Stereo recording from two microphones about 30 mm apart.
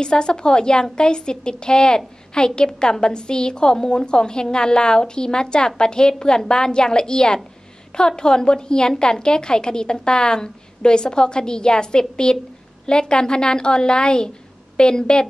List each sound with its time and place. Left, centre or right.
0.0 s a woman's voice: left